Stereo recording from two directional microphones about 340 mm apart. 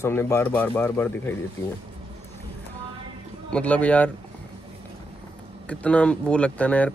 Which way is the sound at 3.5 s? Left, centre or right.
Centre.